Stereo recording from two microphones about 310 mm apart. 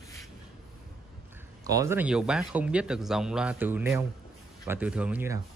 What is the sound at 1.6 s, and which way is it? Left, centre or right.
Speech, centre.